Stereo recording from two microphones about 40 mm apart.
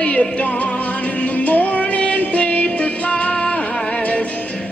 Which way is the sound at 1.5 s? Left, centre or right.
Left.